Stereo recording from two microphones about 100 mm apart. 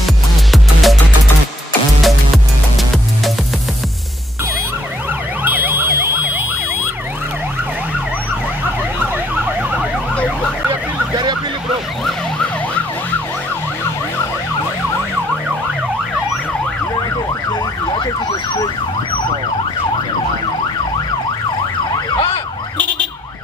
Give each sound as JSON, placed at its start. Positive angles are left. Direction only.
{"t": 0.0, "sound": "music", "side_deg": 0}
{"t": 2.0, "sound": "music", "side_deg": 0}
{"t": 5.4, "sound": "emergency vehicle", "side_deg": -15}
{"t": 9.3, "sound": "emergency vehicle", "side_deg": -15}